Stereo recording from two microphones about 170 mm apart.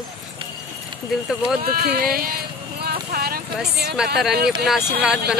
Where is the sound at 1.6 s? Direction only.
60° right (ahead or behind).